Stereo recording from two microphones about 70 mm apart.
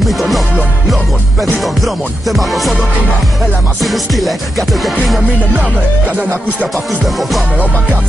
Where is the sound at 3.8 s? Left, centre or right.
Centre.